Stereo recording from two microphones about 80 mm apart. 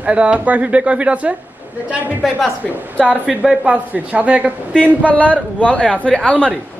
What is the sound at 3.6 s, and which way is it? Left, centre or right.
Speech, centre.